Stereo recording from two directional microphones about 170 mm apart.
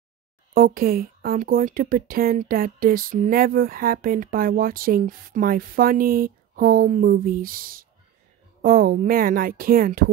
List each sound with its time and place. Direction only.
0.6 s speech: 60° right (ahead or behind)